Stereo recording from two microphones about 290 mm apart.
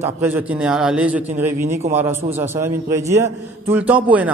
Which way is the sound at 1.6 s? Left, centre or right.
Right.